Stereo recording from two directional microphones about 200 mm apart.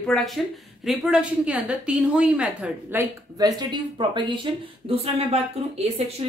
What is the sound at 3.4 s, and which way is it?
A woman's voice, 20° right (ahead or behind).